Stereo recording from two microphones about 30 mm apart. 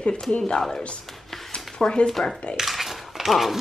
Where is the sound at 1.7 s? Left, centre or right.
Left.